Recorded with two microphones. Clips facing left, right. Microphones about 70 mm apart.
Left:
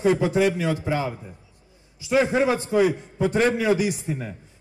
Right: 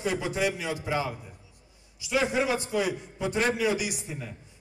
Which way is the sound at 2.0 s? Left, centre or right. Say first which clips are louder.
Left 6 dB; left.